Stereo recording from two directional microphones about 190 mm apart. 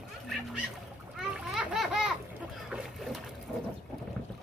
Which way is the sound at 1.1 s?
5° right (ahead or behind).